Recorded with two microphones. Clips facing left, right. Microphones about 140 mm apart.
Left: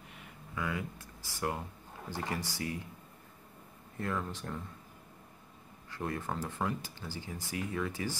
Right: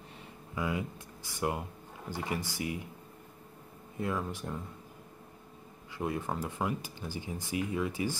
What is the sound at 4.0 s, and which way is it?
Speech, 15° right (ahead or behind).